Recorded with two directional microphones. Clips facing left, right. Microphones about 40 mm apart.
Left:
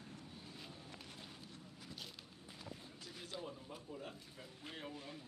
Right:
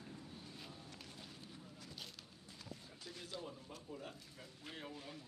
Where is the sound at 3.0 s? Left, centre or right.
Centre.